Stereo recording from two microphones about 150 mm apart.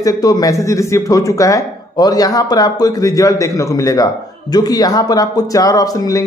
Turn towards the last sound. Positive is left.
turn(degrees=25)  # may be behind; listen again after turning